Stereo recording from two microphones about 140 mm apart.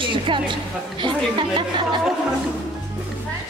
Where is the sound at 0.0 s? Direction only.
35° right (ahead or behind).